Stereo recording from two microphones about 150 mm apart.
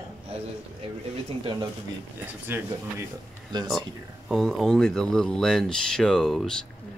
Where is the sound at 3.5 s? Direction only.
30° right (ahead or behind).